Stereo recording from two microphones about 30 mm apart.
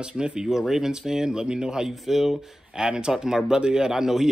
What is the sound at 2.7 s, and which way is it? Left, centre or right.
Speech, right.